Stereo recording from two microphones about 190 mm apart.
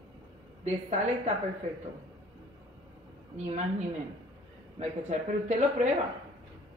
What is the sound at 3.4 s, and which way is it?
A woman's voice, 35° right (ahead or behind).